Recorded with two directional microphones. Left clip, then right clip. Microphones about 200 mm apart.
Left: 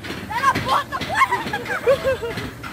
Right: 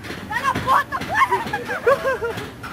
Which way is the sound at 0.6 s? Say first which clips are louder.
Right 3 dB; 15° right (ahead or behind).